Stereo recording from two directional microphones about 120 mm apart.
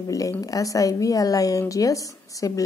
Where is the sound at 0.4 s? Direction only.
30° left (ahead or behind).